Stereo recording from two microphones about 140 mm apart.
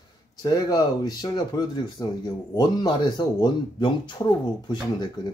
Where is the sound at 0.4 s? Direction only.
25° left (ahead or behind).